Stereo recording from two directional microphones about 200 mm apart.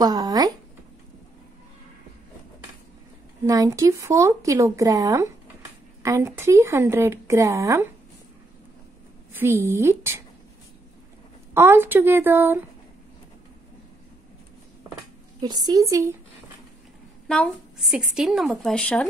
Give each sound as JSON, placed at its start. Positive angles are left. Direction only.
{"t": 0.0, "sound": "speech", "side_deg": -20}
{"t": 3.4, "sound": "speech", "side_deg": -15}
{"t": 9.3, "sound": "speech", "side_deg": -10}
{"t": 11.5, "sound": "speech", "side_deg": -10}
{"t": 15.4, "sound": "speech", "side_deg": -20}
{"t": 17.3, "sound": "a woman's voice", "side_deg": 0}